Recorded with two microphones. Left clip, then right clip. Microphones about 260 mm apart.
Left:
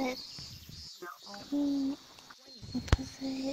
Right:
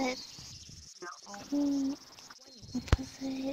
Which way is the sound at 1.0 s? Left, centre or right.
Centre.